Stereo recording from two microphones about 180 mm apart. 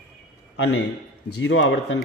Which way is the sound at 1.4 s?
90° left.